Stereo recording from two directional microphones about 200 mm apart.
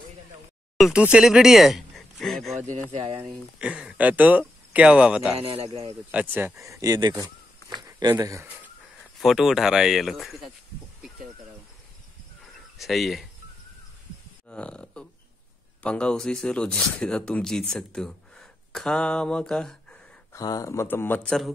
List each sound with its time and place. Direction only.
0.7 s speech: centre (ahead or behind)
2.5 s speech: 35° right (ahead or behind)
3.3 s speech: 5° right (ahead or behind)
5.3 s speech: 30° right (ahead or behind)
6.1 s speech: 10° right (ahead or behind)
9.2 s speech: centre (ahead or behind)
12.7 s speech: centre (ahead or behind)
14.5 s burping: 5° left (ahead or behind)
15.8 s speech: 5° left (ahead or behind)
20.3 s speech: 15° left (ahead or behind)